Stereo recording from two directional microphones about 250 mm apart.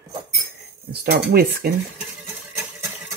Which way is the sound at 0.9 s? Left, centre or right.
Right.